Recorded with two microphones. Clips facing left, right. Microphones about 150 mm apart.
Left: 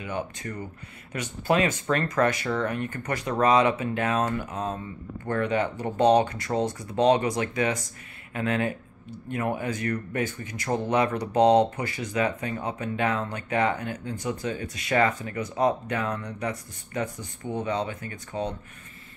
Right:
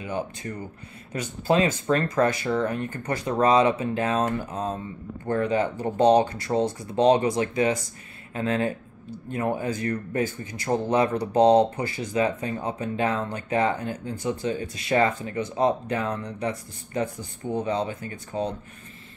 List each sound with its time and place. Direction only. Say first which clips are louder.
0.0 s speech: right 2 dB; 30° right (ahead or behind)